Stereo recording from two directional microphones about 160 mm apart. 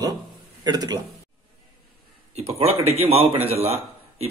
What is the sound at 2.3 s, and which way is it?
Speech, 40° right (ahead or behind).